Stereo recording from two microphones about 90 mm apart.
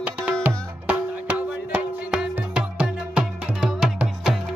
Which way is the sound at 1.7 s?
10° right (ahead or behind).